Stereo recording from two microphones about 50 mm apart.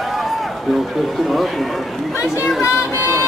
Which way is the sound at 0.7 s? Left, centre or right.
Centre.